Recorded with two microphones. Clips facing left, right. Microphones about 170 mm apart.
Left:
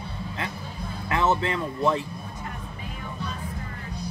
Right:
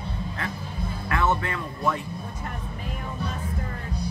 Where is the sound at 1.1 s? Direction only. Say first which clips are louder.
Left 2 dB; 25° left (ahead or behind).